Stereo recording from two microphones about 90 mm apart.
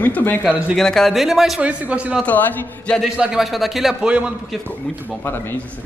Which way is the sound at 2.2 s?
20° left (ahead or behind).